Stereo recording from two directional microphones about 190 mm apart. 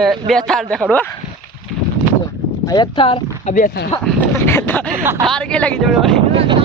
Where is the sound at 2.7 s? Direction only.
25° left (ahead or behind).